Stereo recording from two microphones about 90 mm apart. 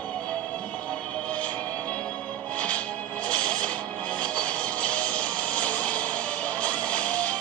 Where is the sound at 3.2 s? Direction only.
15° left (ahead or behind).